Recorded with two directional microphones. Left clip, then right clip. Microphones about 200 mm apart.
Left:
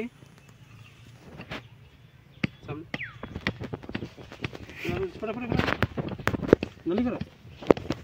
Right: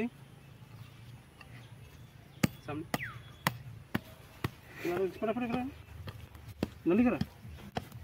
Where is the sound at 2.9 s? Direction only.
35° right (ahead or behind).